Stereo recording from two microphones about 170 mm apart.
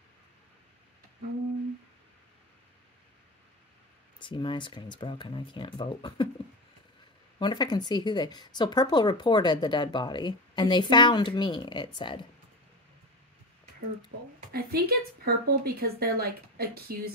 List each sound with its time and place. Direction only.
4.2 s speech: 30° left (ahead or behind)
7.3 s speech: 25° left (ahead or behind)
14.5 s speech: 65° right (ahead or behind)